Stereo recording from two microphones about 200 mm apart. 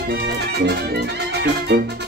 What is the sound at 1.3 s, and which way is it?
Music, 55° right (ahead or behind).